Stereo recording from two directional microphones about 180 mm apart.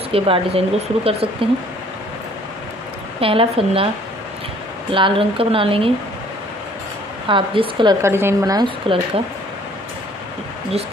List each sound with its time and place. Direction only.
0.1 s speech: 30° right (ahead or behind)
3.2 s speech: 30° right (ahead or behind)
4.9 s speech: 30° right (ahead or behind)
7.2 s speech: 30° right (ahead or behind)